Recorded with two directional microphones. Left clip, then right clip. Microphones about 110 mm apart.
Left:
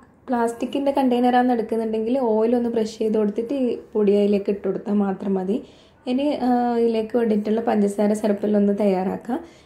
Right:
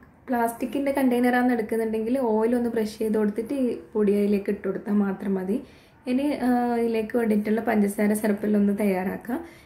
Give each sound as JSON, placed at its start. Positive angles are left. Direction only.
{"t": 0.3, "sound": "a woman's voice", "side_deg": 15}